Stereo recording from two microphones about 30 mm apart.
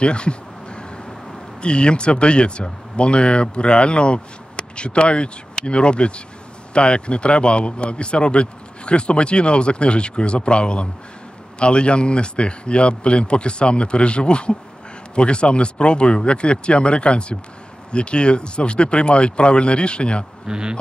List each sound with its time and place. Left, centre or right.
0.0 s a sound: left
1.6 s speech: left
20.4 s speech: right